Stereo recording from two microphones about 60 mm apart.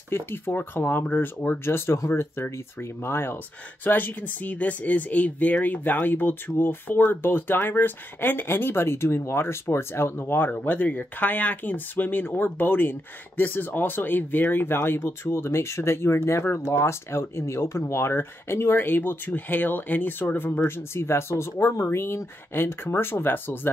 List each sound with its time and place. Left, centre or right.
0.1 s speech: left
3.8 s speech: left